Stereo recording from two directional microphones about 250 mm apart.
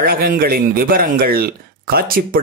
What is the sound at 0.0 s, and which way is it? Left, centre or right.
A man's voice, right.